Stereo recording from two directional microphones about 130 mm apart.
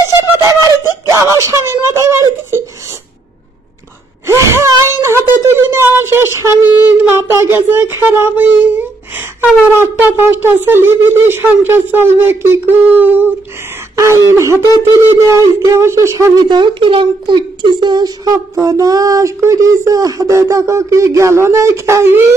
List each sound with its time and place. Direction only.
0.0 s screaming: 25° right (ahead or behind)
4.3 s wail: 20° right (ahead or behind)
7.0 s a sound: 15° right (ahead or behind)
9.8 s a child's voice: 20° right (ahead or behind)
16.4 s a child's voice: 35° right (ahead or behind); by 22.3 s 15° right (ahead or behind)